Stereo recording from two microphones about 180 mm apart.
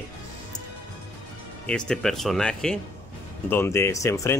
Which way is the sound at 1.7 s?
5° left (ahead or behind).